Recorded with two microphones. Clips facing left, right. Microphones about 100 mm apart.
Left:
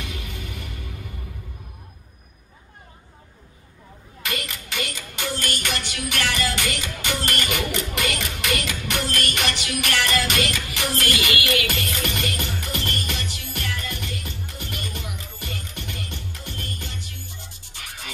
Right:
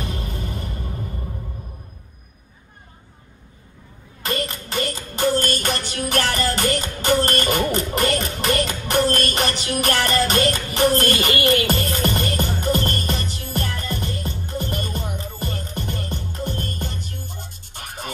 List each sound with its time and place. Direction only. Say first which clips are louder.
0.0 s music: right 5 dB; 35° right (ahead or behind)
4.2 s child singing: right 6 dB; 35° right (ahead or behind)
5.6 s music: right 4 dB; 40° right (ahead or behind)